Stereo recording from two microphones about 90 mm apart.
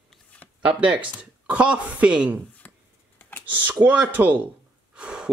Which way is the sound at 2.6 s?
20° left (ahead or behind).